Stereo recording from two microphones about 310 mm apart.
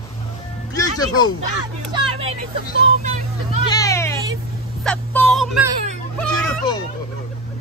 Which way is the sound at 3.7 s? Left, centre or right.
Centre.